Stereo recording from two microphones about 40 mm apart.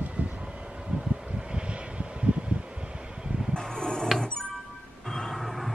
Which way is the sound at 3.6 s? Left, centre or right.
Centre.